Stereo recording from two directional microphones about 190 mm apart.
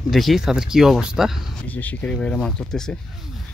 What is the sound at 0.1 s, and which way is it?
Speech, centre (ahead or behind).